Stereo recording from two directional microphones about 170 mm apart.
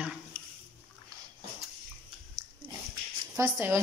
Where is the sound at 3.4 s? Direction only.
15° right (ahead or behind).